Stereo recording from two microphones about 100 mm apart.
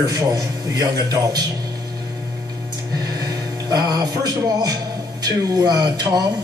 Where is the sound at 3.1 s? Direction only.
40° right (ahead or behind).